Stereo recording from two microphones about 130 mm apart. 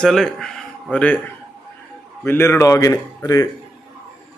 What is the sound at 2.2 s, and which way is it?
A man's voice, 20° left (ahead or behind).